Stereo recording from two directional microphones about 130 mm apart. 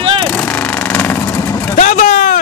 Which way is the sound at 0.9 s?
15° left (ahead or behind).